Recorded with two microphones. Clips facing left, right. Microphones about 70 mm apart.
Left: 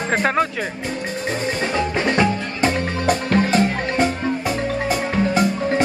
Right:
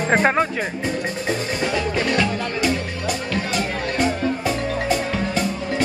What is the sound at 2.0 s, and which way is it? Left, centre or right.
Music, left.